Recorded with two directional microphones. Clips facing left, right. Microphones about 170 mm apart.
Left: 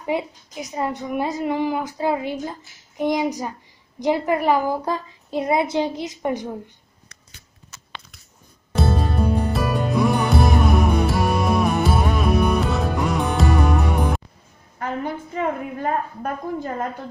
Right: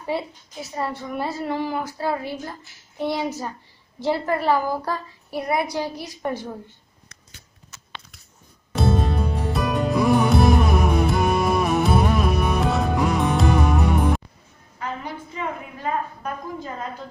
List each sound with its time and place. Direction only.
0.0 s a woman's voice: 15° left (ahead or behind)
8.7 s music: centre (ahead or behind)
14.8 s a woman's voice: 50° left (ahead or behind)